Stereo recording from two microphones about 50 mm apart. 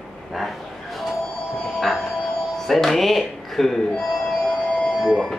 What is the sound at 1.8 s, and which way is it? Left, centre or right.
Speech, centre.